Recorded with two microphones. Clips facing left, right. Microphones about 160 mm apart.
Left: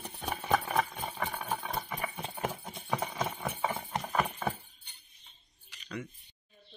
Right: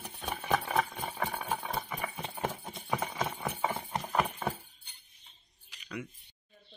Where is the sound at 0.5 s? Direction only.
Centre (ahead or behind).